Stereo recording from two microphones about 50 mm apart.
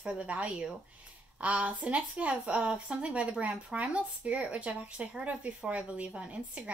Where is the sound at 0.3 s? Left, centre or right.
Right.